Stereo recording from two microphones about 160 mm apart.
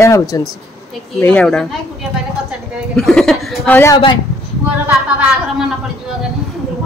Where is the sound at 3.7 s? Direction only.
15° left (ahead or behind).